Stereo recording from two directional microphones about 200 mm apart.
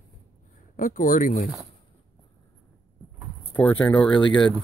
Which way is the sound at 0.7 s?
40° left (ahead or behind).